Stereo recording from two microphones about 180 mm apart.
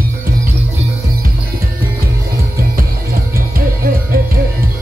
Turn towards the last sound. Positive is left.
turn(degrees=-55)  # may be behind; listen again after turning